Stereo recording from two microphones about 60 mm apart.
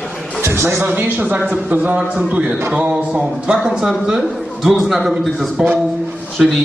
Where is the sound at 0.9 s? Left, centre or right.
Right.